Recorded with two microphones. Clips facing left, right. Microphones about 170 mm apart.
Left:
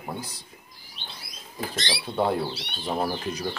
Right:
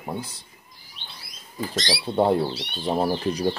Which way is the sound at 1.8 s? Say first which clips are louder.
Right 4 dB; 30° right (ahead or behind).